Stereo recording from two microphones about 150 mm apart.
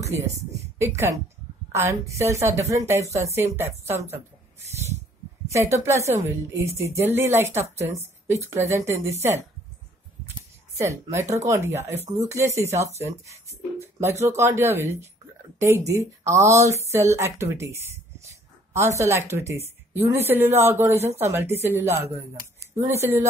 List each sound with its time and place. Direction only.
0.0 s a woman's voice: 20° right (ahead or behind)
5.5 s a woman's voice: 20° right (ahead or behind)
10.8 s a woman's voice: 20° right (ahead or behind)
18.2 s a sound: 20° right (ahead or behind)
20.3 s a woman's voice: 15° right (ahead or behind)
20.9 s speech: 45° right (ahead or behind)
21.2 s a woman's voice: 15° right (ahead or behind)